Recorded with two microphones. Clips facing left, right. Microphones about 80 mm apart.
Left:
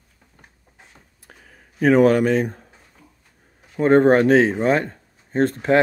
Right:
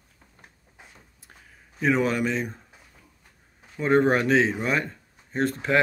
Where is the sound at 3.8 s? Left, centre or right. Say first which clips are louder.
Left 7 dB; left.